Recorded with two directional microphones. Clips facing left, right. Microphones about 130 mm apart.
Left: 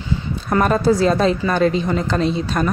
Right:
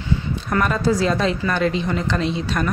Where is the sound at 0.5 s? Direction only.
30° left (ahead or behind).